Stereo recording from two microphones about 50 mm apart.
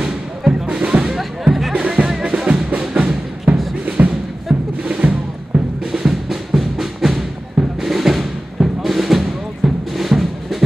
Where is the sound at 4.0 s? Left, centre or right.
Right.